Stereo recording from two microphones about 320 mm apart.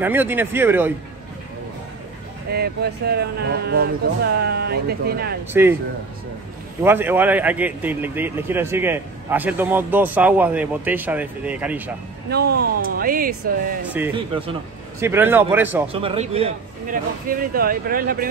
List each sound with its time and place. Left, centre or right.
0.0 s speech: centre
2.5 s speech: right
5.5 s speech: centre
6.8 s a man's voice: centre
12.3 s speech: right
13.8 s a man's voice: centre
14.1 s a man's voice: centre
15.9 s speech: centre